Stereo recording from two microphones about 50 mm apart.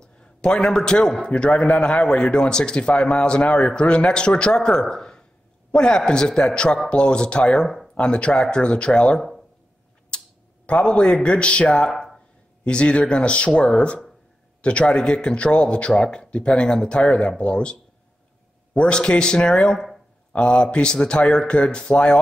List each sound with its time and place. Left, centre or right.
0.0 s a man's voice: centre
7.6 s speech: centre
7.9 s a man's voice: left
10.1 s a sound: centre
10.7 s a man's voice: centre
11.9 s a sound: centre
12.6 s a man's voice: left
18.8 s a man's voice: centre